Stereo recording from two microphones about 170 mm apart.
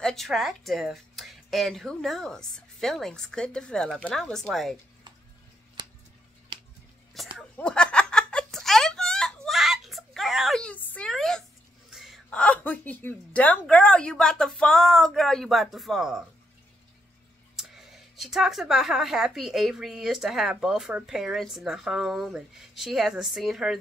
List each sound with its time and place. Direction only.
0.0 s speech: centre (ahead or behind)
5.8 s a sound: 25° right (ahead or behind)
6.5 s music: 30° right (ahead or behind)
7.3 s giggle: 5° left (ahead or behind)
11.9 s speech: centre (ahead or behind)
17.6 s speech: centre (ahead or behind)